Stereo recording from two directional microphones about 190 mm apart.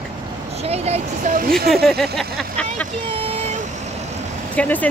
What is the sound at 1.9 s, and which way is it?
Speech, centre (ahead or behind).